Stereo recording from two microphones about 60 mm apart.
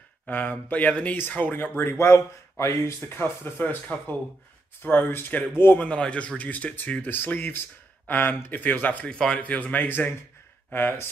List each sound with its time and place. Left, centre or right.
0.3 s a man's voice: left
2.0 s speech: left
3.2 s speech: left
5.8 s a man's voice: centre
6.9 s speech: left
9.1 s speech: centre
9.4 s a man's voice: left